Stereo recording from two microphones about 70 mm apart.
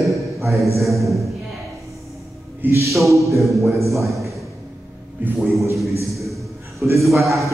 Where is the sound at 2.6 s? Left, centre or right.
Right.